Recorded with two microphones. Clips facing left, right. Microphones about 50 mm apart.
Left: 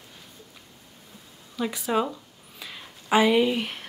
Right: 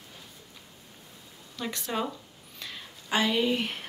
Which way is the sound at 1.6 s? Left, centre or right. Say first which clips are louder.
Left 6 dB; centre.